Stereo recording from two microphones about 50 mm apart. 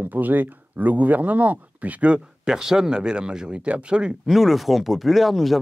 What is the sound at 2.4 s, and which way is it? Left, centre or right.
Speech, centre.